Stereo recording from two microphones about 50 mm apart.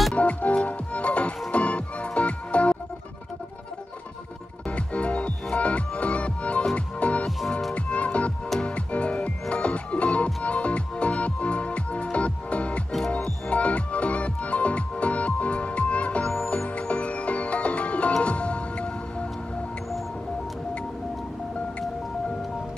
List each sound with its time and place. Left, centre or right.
0.1 s music: left
4.6 s music: left